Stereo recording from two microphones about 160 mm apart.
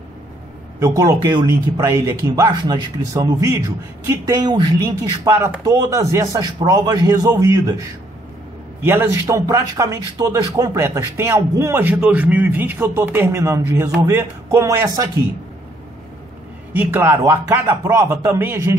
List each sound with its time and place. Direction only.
0.7 s speech: 20° right (ahead or behind)
8.8 s speech: 15° right (ahead or behind)
16.7 s speech: 15° right (ahead or behind)